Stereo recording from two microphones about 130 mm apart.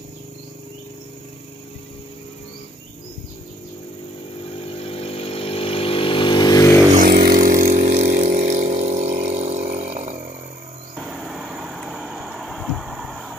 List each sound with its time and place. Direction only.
4.4 s motorcycle: 45° left (ahead or behind); by 6.8 s 25° left (ahead or behind)
6.9 s vehicle: 90° right; by 8.3 s 65° right (ahead or behind)
8.4 s a sound: 70° right (ahead or behind)
11.0 s vehicle: 5° right (ahead or behind)